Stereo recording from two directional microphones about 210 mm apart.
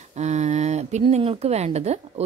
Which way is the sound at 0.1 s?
35° right (ahead or behind).